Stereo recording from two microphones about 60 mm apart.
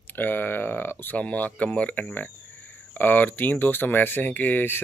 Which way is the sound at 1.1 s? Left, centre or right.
Left.